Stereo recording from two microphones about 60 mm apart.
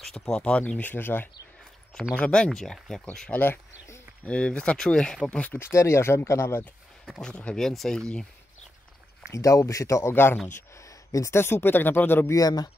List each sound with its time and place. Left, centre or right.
0.4 s speech: left
2.1 s speech: centre
2.6 s speech: centre
3.3 s speech: left
4.3 s speech: centre
5.6 s speech: left
7.2 s speech: centre
7.5 s speech: centre
9.3 s speech: left
10.8 s a sound: left
11.3 s speech: left
12.4 s speech: left